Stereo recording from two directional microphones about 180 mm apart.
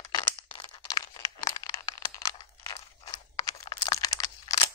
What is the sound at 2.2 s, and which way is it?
Crunch, 20° left (ahead or behind).